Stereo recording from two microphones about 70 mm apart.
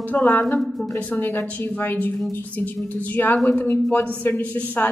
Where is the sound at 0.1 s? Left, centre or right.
Left.